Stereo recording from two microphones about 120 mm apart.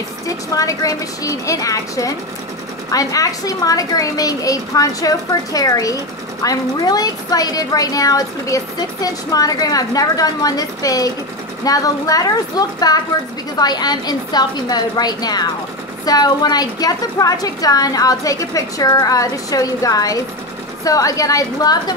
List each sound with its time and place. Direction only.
0.6 s a woman's voice: 30° left (ahead or behind)